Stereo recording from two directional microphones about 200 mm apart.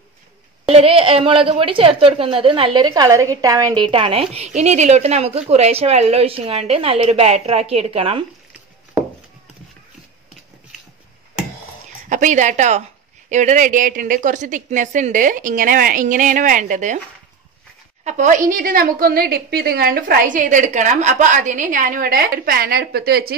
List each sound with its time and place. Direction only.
0.7 s a woman's voice: 30° right (ahead or behind)
12.1 s a woman's voice: 40° right (ahead or behind)
18.0 s a woman's voice: 35° right (ahead or behind)